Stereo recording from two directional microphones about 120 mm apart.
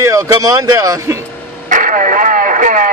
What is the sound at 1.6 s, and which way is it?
Radio, 90° right.